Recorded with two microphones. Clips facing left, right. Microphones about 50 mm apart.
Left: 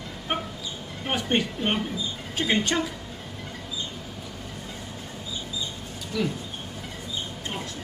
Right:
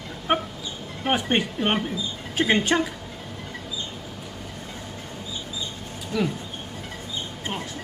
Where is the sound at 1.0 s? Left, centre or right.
Right.